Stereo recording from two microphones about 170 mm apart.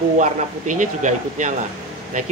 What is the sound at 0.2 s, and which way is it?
Speech, 45° right (ahead or behind).